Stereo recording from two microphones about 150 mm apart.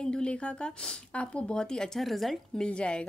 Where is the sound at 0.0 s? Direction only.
5° left (ahead or behind).